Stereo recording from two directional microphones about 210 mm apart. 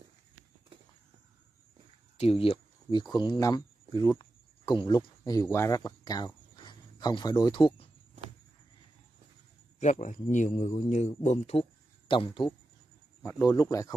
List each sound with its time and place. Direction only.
2.1 s speech: 30° left (ahead or behind)
9.8 s a man's voice: 35° left (ahead or behind); by 13.9 s 15° left (ahead or behind)